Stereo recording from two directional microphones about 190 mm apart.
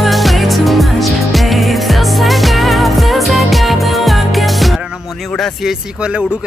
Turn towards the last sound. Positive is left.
turn(degrees=-5)  # may be behind; listen again after turning